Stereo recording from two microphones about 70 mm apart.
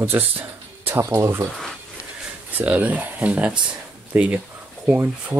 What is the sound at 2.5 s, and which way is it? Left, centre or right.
Speech, right.